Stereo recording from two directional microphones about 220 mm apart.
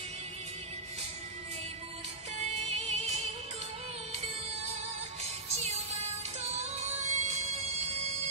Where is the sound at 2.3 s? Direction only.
30° right (ahead or behind).